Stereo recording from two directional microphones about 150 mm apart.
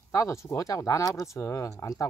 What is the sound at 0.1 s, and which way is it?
Speech, 20° left (ahead or behind).